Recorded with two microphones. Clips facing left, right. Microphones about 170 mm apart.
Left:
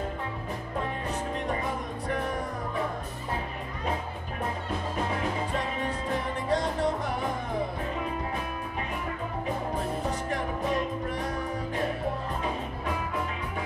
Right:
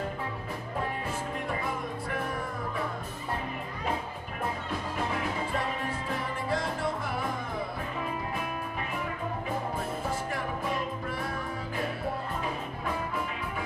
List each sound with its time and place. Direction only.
1.5 s music: 40° left (ahead or behind)
6.5 s music: 40° left (ahead or behind)